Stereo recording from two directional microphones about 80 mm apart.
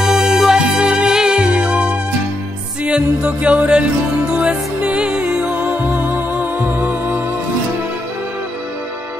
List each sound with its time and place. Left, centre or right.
0.0 s music: centre